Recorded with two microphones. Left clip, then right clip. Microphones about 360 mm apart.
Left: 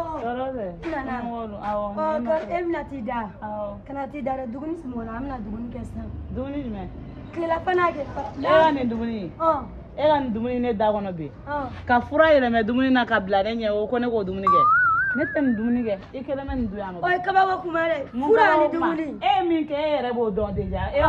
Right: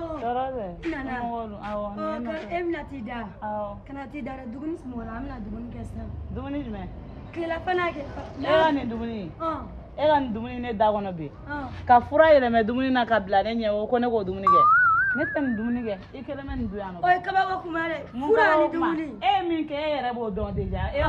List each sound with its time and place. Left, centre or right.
0.3 s a sound: centre
0.8 s a woman's voice: centre
1.2 s speech: centre
2.0 s a woman's voice: centre
7.3 s a woman's voice: centre
8.6 s a man's voice: centre; by 14.4 s right
14.4 s music: centre
15.2 s speech: centre